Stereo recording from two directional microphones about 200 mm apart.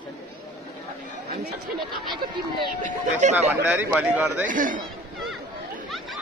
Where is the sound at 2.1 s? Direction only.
20° right (ahead or behind).